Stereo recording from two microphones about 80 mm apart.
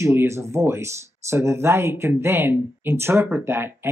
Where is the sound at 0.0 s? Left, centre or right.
Right.